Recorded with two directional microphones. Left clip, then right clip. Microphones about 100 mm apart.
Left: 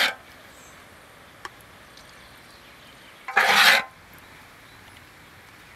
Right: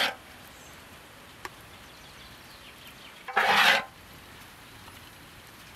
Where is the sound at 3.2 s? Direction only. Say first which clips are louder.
Left 5 dB; 25° left (ahead or behind).